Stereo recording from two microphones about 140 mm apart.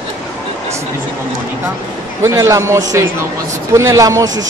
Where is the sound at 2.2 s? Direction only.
20° right (ahead or behind).